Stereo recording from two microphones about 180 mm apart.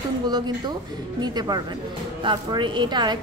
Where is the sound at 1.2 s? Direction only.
20° right (ahead or behind).